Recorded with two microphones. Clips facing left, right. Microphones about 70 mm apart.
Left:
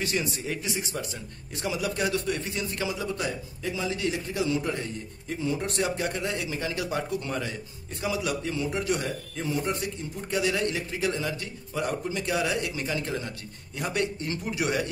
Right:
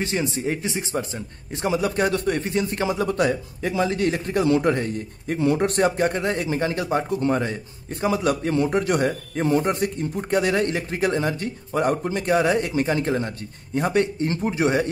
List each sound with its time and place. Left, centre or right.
0.0 s a man's voice: right